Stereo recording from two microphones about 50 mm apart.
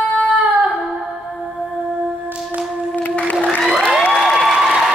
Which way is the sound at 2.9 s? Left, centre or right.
Left.